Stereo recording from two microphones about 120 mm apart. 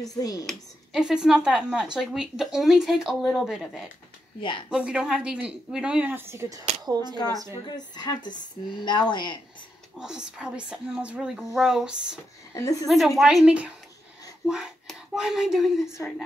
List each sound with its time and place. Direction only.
0.1 s a woman's voice: 30° left (ahead or behind)
0.5 s speech: 5° right (ahead or behind)
4.4 s speech: 45° left (ahead or behind)
4.6 s speech: 10° right (ahead or behind)
6.8 s speech: 35° right (ahead or behind)
7.4 s a woman's voice: 35° left (ahead or behind)
9.9 s speech: 5° right (ahead or behind)
12.5 s a woman's voice: 25° left (ahead or behind)
12.8 s speech: centre (ahead or behind)